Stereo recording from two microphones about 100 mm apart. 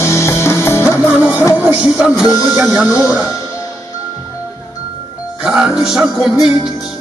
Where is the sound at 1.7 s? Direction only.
10° right (ahead or behind).